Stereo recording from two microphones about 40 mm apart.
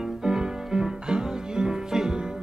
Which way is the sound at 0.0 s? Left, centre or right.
Centre.